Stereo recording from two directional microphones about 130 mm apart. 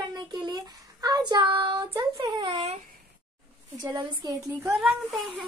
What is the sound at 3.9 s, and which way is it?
Speech, 30° right (ahead or behind).